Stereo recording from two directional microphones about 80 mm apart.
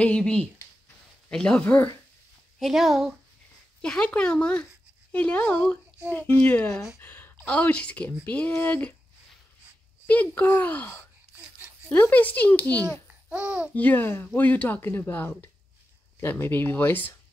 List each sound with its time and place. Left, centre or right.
0.0 s speech: centre
1.6 s speech: left
2.6 s speech: centre
3.8 s speech: centre
7.0 s a sound: left
7.4 s speech: centre
10.0 s speech: left
11.3 s a sound: centre
11.9 s speech: left
13.3 s a child's voice: centre
13.7 s speech: left